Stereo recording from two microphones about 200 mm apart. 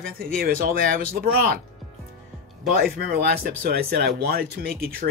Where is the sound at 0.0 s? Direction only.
45° right (ahead or behind).